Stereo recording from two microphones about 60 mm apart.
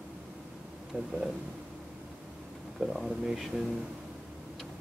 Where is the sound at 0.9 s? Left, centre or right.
Centre.